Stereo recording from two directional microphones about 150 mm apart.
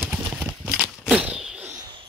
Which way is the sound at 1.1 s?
5° right (ahead or behind).